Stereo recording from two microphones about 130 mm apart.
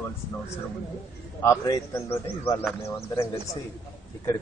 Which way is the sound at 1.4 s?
25° left (ahead or behind).